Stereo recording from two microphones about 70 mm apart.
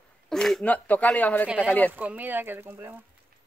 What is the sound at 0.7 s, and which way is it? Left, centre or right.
Speech, left.